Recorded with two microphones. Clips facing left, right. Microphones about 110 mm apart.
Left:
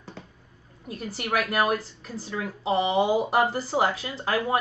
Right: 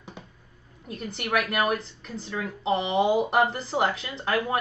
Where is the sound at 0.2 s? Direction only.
15° right (ahead or behind).